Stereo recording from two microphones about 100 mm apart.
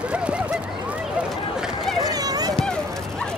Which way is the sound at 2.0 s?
40° right (ahead or behind).